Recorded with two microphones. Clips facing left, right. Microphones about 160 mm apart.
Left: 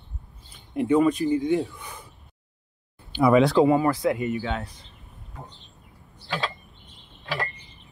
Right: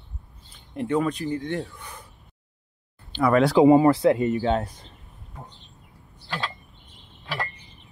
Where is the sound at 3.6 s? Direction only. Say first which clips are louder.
Right 5 dB; 25° right (ahead or behind).